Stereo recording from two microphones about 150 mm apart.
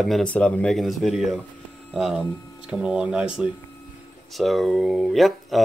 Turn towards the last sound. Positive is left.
turn(degrees=0)  # may be behind; listen again after turning